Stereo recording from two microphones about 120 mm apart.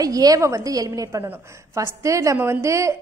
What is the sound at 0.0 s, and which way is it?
A woman's voice, 30° right (ahead or behind).